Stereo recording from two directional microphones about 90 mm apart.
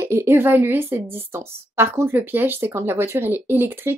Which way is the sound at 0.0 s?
30° right (ahead or behind).